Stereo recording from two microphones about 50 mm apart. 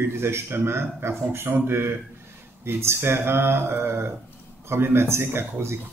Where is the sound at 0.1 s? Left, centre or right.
Right.